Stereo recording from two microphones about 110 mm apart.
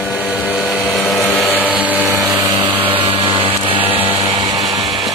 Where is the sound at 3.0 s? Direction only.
55° right (ahead or behind).